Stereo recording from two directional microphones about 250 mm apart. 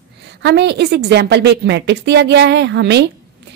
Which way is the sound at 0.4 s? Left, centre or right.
Right.